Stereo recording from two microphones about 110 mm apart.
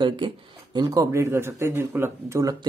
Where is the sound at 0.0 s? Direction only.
45° right (ahead or behind).